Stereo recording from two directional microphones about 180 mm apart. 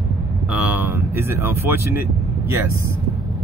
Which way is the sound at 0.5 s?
5° right (ahead or behind).